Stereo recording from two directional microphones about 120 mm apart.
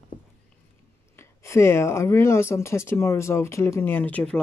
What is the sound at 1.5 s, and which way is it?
Speech, 25° left (ahead or behind).